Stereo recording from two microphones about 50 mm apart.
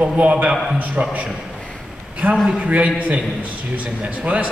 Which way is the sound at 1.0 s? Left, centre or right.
Right.